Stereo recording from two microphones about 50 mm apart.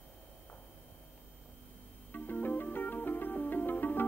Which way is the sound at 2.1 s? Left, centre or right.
Left.